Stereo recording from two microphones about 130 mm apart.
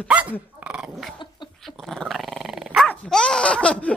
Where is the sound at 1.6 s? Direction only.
5° left (ahead or behind).